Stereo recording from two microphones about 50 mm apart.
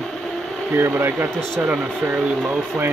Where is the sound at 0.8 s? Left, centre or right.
Right.